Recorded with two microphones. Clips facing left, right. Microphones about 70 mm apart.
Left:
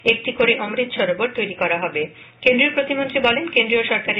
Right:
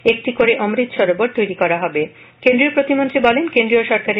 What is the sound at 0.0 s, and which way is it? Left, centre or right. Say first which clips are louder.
Speech: right 5 dB; right.